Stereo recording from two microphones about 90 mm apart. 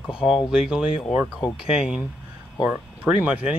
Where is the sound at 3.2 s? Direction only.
15° right (ahead or behind).